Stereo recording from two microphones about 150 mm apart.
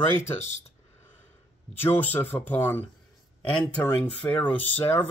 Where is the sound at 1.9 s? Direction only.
10° left (ahead or behind).